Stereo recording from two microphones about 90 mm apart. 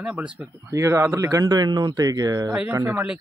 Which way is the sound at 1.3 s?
45° right (ahead or behind).